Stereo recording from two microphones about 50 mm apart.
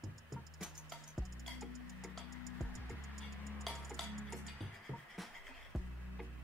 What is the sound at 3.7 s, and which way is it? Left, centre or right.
Music, centre.